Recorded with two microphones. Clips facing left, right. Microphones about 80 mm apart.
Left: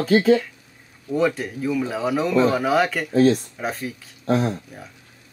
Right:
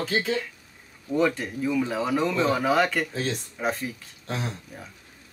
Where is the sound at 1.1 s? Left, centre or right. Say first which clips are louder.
Left 2 dB; centre.